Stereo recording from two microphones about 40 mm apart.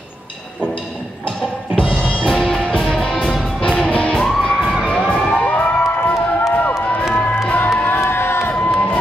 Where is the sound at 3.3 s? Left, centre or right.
Centre.